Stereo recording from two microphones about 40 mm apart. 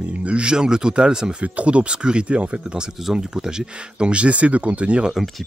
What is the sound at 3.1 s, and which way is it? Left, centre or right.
Speech, centre.